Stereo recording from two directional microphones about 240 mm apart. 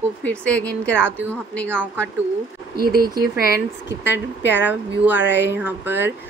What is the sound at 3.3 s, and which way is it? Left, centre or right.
Speech, left.